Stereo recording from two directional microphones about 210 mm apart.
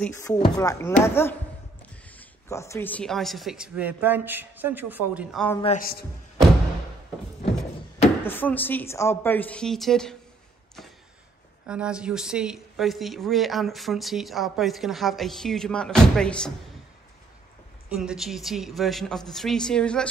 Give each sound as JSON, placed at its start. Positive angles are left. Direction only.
{"t": 0.0, "sound": "a woman's voice", "side_deg": 15}
{"t": 5.8, "sound": "a man's voice", "side_deg": 45}
{"t": 8.2, "sound": "a woman's voice", "side_deg": 10}
{"t": 11.6, "sound": "speech", "side_deg": -5}
{"t": 17.8, "sound": "speech", "side_deg": -5}